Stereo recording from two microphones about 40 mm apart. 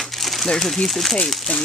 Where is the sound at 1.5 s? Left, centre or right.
Left.